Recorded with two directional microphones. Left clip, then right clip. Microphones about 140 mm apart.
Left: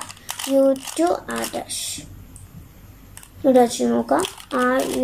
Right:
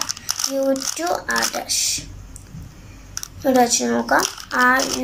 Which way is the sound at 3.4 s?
30° left (ahead or behind).